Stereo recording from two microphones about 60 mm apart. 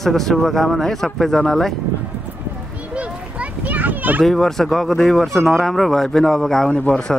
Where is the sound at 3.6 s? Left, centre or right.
Right.